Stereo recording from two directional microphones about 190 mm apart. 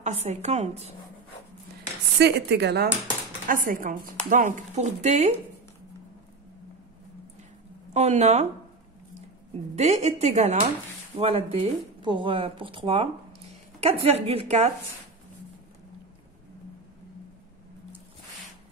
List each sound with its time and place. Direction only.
0.0 s a woman's voice: 35° right (ahead or behind)
2.1 s speech: 60° right (ahead or behind)
3.4 s a woman's voice: 45° right (ahead or behind)
7.9 s a woman's voice: 35° right (ahead or behind)
9.8 s a woman's voice: 35° right (ahead or behind)